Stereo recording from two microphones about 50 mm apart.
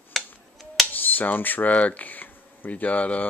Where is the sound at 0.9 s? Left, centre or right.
Left.